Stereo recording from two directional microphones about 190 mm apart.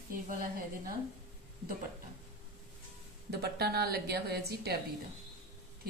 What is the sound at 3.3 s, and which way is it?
A woman's voice, 60° right (ahead or behind).